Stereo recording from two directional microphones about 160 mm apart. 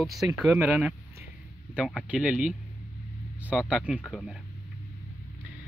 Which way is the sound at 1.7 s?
5° right (ahead or behind).